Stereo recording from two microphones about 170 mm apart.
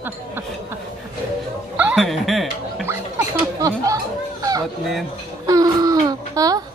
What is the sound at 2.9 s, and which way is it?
Speech, 15° right (ahead or behind).